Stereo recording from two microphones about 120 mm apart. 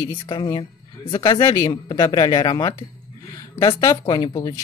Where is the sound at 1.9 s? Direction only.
40° left (ahead or behind).